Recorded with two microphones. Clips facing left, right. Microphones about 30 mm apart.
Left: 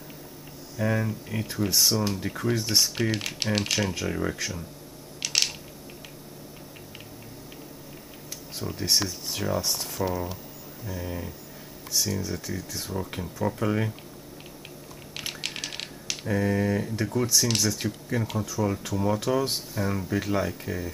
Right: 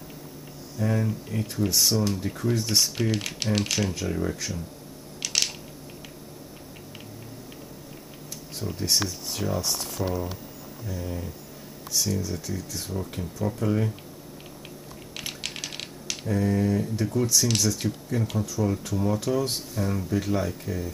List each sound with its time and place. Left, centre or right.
0.7 s speech: centre
5.2 s a sound: centre
8.5 s speech: centre
15.1 s typewriter: centre
16.3 s speech: centre